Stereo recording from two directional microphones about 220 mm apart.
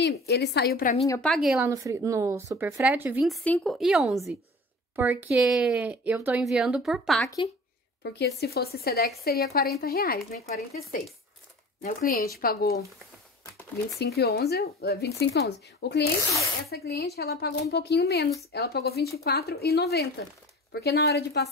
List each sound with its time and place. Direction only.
0.0 s speech: 50° left (ahead or behind)
1.2 s speech: centre (ahead or behind)
1.7 s a woman's voice: 15° right (ahead or behind)
8.0 s speech: 50° left (ahead or behind)
11.8 s speech: 40° left (ahead or behind)
13.9 s speech: 45° left (ahead or behind)
16.2 s speech: 15° left (ahead or behind)
16.7 s speech: 45° left (ahead or behind)